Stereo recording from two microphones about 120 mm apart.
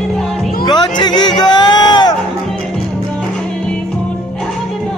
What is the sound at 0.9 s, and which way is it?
Music, 35° left (ahead or behind).